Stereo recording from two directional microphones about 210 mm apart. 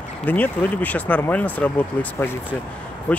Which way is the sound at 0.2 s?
10° left (ahead or behind).